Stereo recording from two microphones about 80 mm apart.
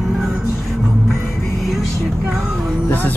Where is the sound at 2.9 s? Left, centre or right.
Left.